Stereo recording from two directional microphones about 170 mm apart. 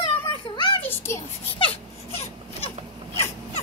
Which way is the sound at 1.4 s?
35° left (ahead or behind).